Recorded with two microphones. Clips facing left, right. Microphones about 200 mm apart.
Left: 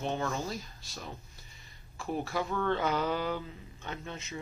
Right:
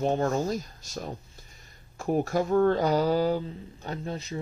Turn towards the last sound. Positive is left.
turn(degrees=-35)  # may be behind; listen again after turning